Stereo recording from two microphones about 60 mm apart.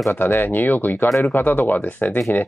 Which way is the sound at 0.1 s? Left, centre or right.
Left.